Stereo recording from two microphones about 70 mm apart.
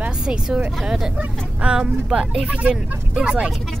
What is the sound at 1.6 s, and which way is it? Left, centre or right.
Speech, centre.